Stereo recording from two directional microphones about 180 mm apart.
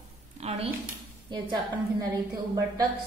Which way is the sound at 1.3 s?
25° right (ahead or behind).